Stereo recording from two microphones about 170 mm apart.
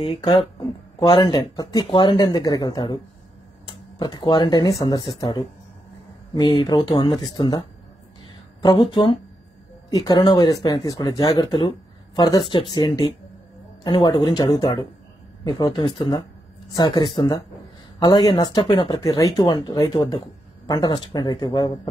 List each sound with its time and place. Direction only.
0.0 s speech: 35° left (ahead or behind)
0.3 s speech: 25° left (ahead or behind)
4.0 s speech: 25° left (ahead or behind)
8.6 s speech: 25° left (ahead or behind)